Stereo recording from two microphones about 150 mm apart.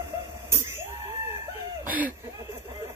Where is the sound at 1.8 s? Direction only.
10° right (ahead or behind).